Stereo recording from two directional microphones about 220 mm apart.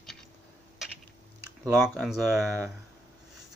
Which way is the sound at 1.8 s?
Centre (ahead or behind).